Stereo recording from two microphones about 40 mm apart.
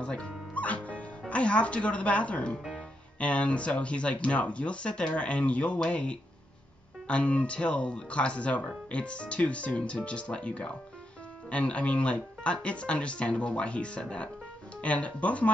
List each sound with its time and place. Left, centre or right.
0.0 s speech: left
0.6 s music: left
1.3 s speech: left